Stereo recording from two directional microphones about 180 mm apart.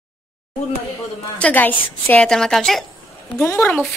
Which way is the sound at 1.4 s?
10° left (ahead or behind).